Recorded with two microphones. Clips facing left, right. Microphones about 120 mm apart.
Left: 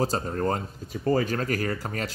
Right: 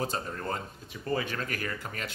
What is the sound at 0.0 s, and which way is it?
Speech, 40° left (ahead or behind).